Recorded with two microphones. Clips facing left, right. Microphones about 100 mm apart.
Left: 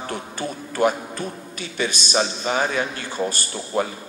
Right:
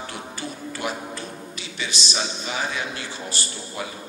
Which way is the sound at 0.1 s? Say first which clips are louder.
Left 5 dB; 50° left (ahead or behind).